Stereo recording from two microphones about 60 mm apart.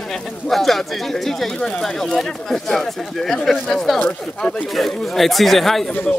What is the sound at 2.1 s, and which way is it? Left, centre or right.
Speech, centre.